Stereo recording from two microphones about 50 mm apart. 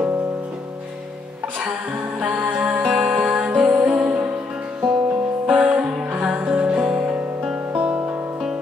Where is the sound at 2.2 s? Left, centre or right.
Right.